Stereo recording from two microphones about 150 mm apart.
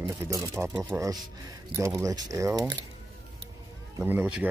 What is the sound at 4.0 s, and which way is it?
Speech, 15° right (ahead or behind).